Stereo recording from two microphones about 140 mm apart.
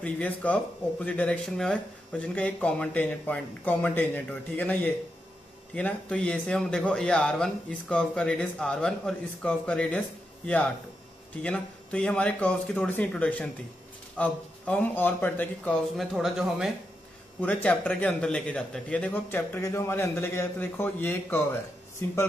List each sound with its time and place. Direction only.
0.0 s speech: 10° left (ahead or behind)
16.0 s speech: centre (ahead or behind)
17.4 s speech: 10° left (ahead or behind)